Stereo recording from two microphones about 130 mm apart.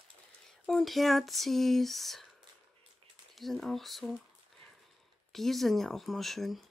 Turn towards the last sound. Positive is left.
turn(degrees=0)  # may be behind; listen again after turning